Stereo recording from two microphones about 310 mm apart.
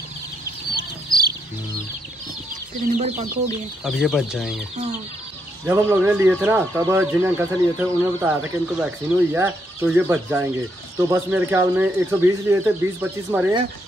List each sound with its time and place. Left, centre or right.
0.7 s a sound: centre
2.9 s speech: right
3.8 s speech: centre
5.7 s speech: centre